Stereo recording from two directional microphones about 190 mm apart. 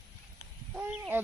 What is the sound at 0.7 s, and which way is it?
Speech, 5° right (ahead or behind).